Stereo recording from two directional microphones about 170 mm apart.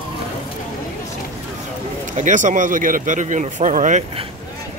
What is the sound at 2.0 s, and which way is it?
Speech, 45° right (ahead or behind).